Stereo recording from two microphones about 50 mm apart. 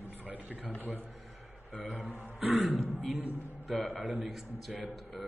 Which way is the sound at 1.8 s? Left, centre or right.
Right.